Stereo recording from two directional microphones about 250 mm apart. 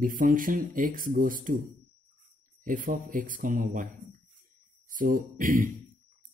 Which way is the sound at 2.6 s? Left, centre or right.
Right.